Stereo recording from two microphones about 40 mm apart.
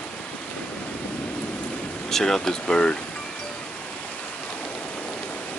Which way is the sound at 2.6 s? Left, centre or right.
Left.